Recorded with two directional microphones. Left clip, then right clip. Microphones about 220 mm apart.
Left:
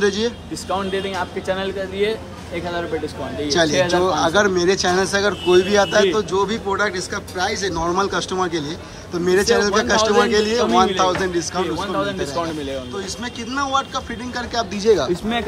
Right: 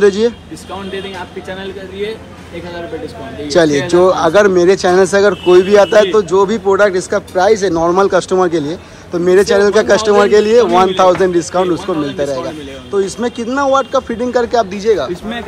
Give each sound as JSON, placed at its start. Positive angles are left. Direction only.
{"t": 0.0, "sound": "speech", "side_deg": 10}
{"t": 0.9, "sound": "speech", "side_deg": 25}
{"t": 3.4, "sound": "speech", "side_deg": 10}